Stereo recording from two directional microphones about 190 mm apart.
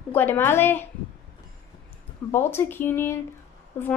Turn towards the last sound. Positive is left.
turn(degrees=10)  # may be behind; listen again after turning